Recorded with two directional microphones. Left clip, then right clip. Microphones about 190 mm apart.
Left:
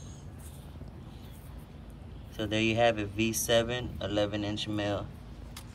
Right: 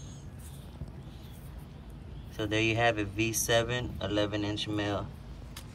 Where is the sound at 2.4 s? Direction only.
10° left (ahead or behind).